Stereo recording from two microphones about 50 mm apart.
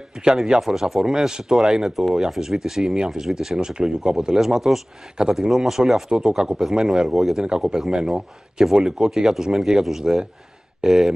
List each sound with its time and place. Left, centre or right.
0.2 s speech: centre